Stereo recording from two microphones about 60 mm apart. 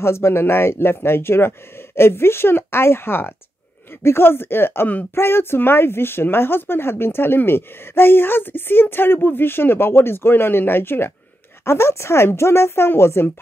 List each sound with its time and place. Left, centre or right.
0.0 s speech: left